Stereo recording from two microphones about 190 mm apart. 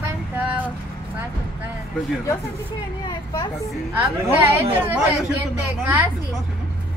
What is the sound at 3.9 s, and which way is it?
Speech, 15° right (ahead or behind).